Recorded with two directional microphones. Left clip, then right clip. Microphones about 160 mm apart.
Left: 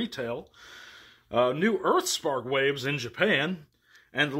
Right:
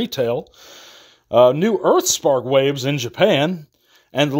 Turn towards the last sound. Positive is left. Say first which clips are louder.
# right 8 dB
turn(degrees=-50)  # may be behind; listen again after turning